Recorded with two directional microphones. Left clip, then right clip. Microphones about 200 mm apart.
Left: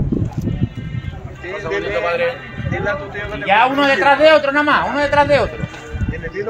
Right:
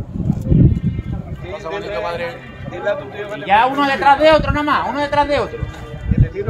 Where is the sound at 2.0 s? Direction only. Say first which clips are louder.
Left 5 dB; 60° right (ahead or behind).